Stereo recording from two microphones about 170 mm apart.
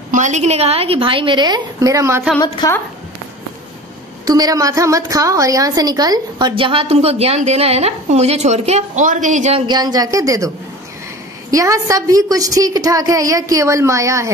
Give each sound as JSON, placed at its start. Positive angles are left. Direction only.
{"t": 0.1, "sound": "a woman's voice", "side_deg": -45}
{"t": 2.4, "sound": "a woman's voice", "side_deg": 20}
{"t": 4.3, "sound": "a woman's voice", "side_deg": -20}
{"t": 11.5, "sound": "a woman's voice", "side_deg": -20}